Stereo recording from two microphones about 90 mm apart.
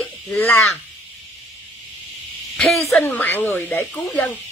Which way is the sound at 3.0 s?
20° left (ahead or behind).